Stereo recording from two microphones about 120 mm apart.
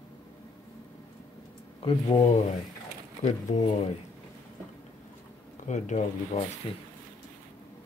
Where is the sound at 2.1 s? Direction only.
65° left (ahead or behind).